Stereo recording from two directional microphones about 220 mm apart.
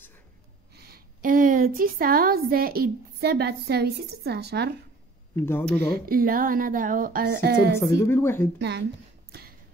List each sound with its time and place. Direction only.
0.7 s a woman's voice: 45° right (ahead or behind)
5.3 s speech: 10° left (ahead or behind)
5.9 s speech: 40° right (ahead or behind)
8.1 s speech: 10° left (ahead or behind)
8.5 s speech: 50° right (ahead or behind)